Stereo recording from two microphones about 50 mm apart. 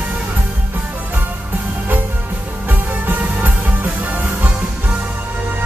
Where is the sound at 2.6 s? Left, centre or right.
Right.